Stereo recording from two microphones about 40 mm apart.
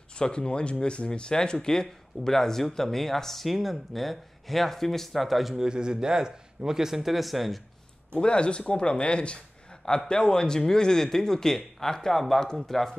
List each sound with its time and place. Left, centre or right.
0.1 s speech: left; by 5.6 s centre
5.6 s speech: centre
8.2 s speech: left; by 12.9 s centre